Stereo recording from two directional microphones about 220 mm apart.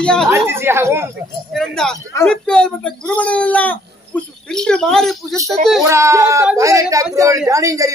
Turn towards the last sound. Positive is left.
turn(degrees=-15)  # may be behind; listen again after turning